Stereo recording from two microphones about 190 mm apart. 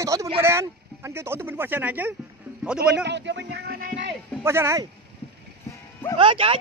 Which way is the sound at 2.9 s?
65° right (ahead or behind).